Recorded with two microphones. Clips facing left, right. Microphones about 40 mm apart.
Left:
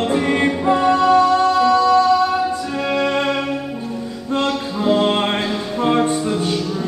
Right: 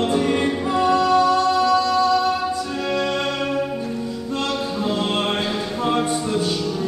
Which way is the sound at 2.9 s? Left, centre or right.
Centre.